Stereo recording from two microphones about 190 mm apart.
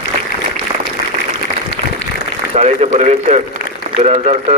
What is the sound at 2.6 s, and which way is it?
A man's voice, 35° right (ahead or behind).